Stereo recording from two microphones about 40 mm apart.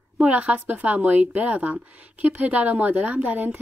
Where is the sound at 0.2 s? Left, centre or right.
Right.